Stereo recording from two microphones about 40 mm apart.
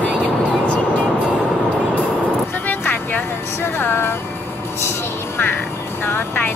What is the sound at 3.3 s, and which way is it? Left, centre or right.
Speech, left.